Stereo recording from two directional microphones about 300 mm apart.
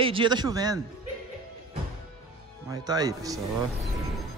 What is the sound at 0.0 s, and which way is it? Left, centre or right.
Speech, centre.